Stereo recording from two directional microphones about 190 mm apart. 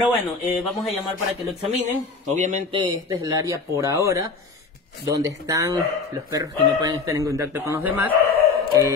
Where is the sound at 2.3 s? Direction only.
40° right (ahead or behind).